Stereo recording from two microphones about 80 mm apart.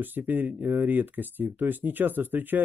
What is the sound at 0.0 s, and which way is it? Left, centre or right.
Speech, right.